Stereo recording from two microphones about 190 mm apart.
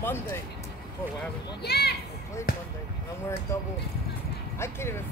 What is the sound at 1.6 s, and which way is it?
Speech, 60° left (ahead or behind).